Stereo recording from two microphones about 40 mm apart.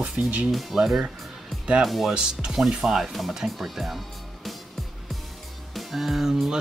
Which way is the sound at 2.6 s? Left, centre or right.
Centre.